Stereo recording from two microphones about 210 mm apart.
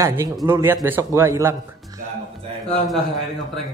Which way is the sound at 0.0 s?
10° right (ahead or behind).